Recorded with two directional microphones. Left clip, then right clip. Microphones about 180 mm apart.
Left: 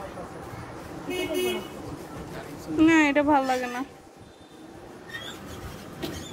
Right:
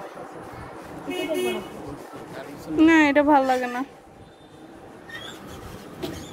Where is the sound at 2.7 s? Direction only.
20° right (ahead or behind).